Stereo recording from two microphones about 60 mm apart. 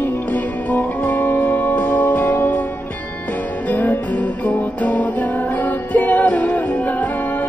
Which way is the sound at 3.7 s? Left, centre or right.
Left.